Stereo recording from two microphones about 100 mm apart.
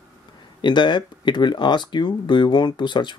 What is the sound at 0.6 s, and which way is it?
Speech, 50° left (ahead or behind).